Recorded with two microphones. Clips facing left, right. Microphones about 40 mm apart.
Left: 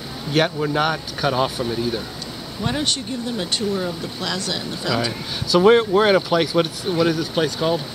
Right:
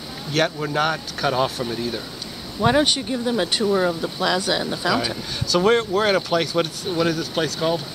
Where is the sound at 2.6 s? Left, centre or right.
Centre.